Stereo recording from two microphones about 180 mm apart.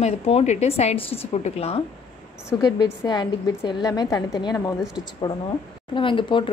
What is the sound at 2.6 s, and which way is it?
A woman's voice, 20° left (ahead or behind).